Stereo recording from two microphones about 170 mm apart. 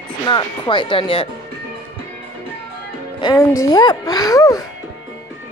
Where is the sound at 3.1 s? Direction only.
25° left (ahead or behind).